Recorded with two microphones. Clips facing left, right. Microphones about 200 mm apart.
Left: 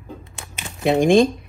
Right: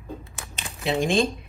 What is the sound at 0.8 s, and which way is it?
Speech, 55° left (ahead or behind).